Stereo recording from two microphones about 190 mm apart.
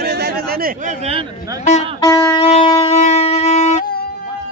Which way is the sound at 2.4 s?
30° left (ahead or behind).